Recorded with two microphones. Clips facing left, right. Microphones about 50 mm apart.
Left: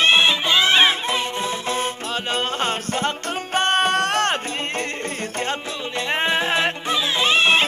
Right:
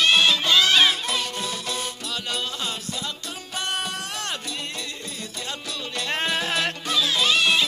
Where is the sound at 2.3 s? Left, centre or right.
Left.